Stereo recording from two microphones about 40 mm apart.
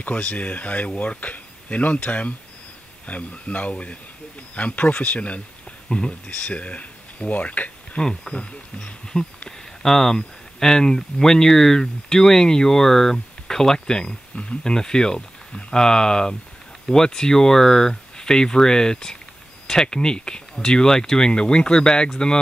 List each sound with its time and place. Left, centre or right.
0.3 s speech: left
5.9 s speech: centre
6.2 s speech: left
8.0 s speech: centre
8.4 s speech: left